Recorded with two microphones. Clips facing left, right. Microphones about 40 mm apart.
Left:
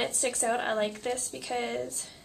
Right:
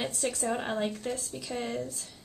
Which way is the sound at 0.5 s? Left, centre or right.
Centre.